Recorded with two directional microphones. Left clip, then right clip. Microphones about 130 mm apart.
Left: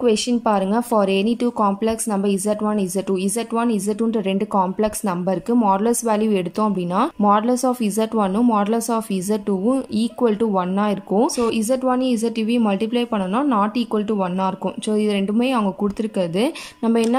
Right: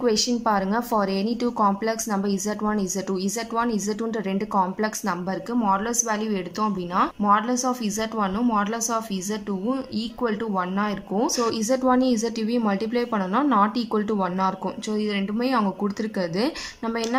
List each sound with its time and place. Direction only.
0.0 s a woman's voice: 20° left (ahead or behind)
15.0 s a woman's voice: 30° left (ahead or behind)